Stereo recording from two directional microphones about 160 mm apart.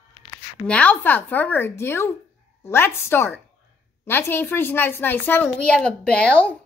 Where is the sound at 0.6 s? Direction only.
10° left (ahead or behind).